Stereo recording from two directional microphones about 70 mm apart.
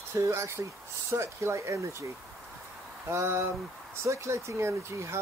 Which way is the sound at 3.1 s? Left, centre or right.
Right.